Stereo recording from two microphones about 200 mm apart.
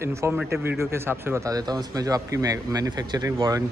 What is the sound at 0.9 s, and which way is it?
Speech, 10° right (ahead or behind).